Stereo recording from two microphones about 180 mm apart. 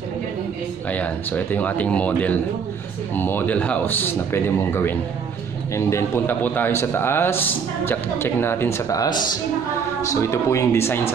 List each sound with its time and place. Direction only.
0.9 s a man's voice: 10° left (ahead or behind)
10.2 s a man's voice: 15° left (ahead or behind)